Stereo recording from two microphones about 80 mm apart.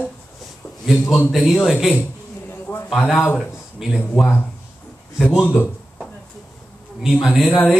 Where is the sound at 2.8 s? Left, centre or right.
Centre.